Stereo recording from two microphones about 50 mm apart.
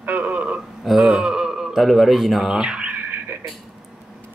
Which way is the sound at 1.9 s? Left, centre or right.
Centre.